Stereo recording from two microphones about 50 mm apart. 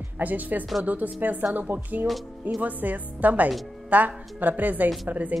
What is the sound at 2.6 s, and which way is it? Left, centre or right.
A woman's voice, right.